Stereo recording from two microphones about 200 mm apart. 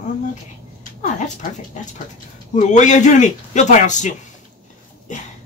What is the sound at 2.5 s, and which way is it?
A man's voice, 35° left (ahead or behind).